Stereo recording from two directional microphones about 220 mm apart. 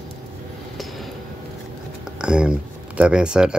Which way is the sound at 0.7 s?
Centre (ahead or behind).